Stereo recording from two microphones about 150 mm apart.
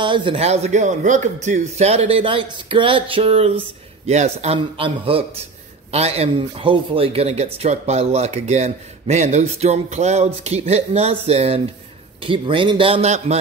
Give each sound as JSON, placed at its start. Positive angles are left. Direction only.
{"t": 0.0, "sound": "speech", "side_deg": -35}